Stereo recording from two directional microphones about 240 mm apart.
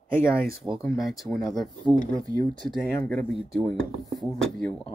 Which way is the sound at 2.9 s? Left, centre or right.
Centre.